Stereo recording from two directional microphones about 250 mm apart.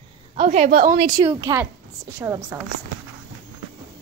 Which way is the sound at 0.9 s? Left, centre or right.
Right.